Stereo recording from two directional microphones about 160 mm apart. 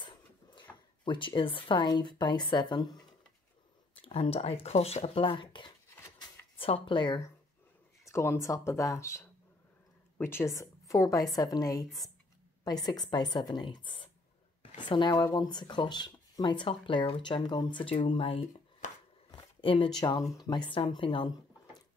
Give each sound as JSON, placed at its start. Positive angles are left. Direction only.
{"t": 0.0, "sound": "a sound", "side_deg": 30}
{"t": 1.0, "sound": "speech", "side_deg": 30}
{"t": 4.0, "sound": "speech", "side_deg": 35}
{"t": 5.9, "sound": "wood", "side_deg": 15}
{"t": 6.6, "sound": "speech", "side_deg": 35}
{"t": 8.1, "sound": "a woman's voice", "side_deg": 15}
{"t": 19.3, "sound": "a sound", "side_deg": 35}
{"t": 20.0, "sound": "speech", "side_deg": 25}